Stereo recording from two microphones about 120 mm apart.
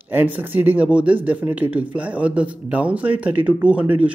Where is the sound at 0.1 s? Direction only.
15° right (ahead or behind).